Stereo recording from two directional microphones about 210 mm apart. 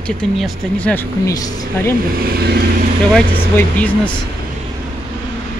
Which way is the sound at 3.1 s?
5° left (ahead or behind).